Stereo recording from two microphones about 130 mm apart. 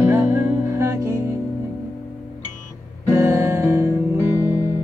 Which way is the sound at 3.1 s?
20° right (ahead or behind).